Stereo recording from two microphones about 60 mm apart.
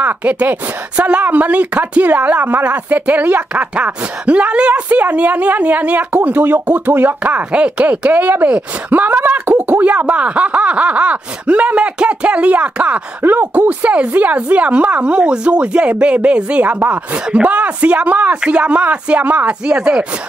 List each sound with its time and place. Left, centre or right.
0.0 s speech: right
13.2 s speech: right; by 20.1 s centre